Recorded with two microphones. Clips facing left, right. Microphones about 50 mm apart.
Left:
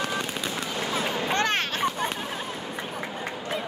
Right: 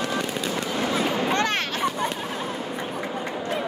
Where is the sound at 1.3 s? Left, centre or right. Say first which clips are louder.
Right 1 dB; left.